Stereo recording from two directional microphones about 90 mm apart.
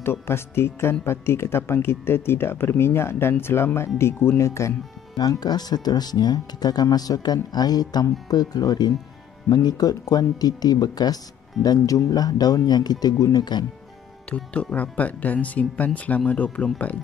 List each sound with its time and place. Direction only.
0.0 s speech: 25° left (ahead or behind)
5.1 s speech: 45° left (ahead or behind)
14.3 s speech: 15° left (ahead or behind)